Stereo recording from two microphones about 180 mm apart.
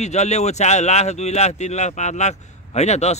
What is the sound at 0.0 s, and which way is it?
Speech, 40° left (ahead or behind).